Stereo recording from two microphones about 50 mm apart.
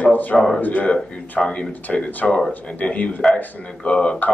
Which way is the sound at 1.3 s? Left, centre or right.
Centre.